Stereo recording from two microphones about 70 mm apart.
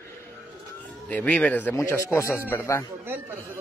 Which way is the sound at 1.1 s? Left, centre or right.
Left.